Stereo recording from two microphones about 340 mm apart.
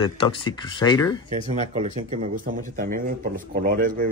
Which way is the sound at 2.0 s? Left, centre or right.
Right.